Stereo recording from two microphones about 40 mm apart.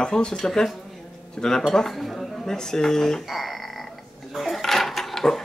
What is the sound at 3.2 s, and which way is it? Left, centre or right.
Frog, centre.